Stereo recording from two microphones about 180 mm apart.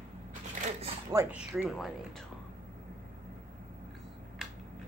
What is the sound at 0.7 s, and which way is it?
Zipper, 35° right (ahead or behind).